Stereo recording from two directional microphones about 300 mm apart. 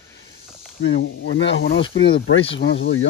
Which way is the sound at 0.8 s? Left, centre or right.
Left.